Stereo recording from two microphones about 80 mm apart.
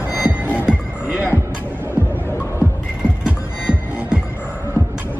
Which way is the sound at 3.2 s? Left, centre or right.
Centre.